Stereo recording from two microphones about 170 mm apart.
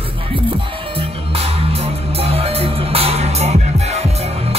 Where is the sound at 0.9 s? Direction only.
35° right (ahead or behind).